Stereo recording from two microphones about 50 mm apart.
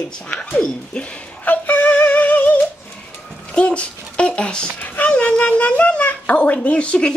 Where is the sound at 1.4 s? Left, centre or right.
Left.